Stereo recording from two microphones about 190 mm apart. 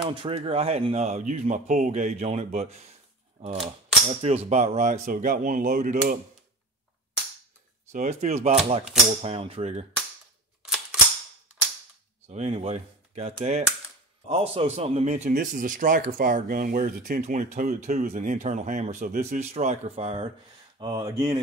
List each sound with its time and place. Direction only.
0.1 s speech: 30° right (ahead or behind)
7.9 s speech: 40° right (ahead or behind)
10.6 s cap gun: 5° right (ahead or behind)
12.3 s speech: 35° right (ahead or behind)
20.8 s speech: 20° right (ahead or behind)